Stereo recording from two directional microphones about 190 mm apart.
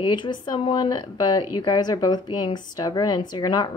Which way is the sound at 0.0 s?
25° left (ahead or behind).